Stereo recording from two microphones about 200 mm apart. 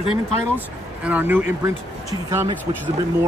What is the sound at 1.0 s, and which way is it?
Speech, 10° right (ahead or behind).